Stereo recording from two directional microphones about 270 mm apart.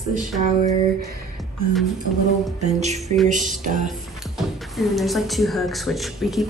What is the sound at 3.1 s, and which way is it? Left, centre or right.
Speech, right.